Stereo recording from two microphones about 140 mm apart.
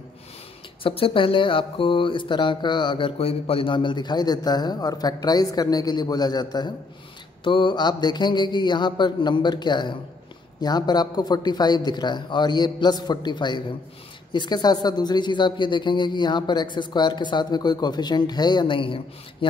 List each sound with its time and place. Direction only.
0.8 s speech: 40° left (ahead or behind)